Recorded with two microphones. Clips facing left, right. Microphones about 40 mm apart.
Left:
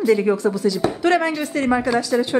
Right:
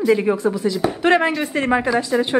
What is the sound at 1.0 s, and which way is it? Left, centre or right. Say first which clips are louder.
Speech: right 3 dB; right.